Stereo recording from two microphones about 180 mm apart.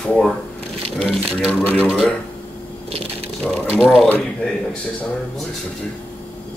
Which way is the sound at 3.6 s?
Centre (ahead or behind).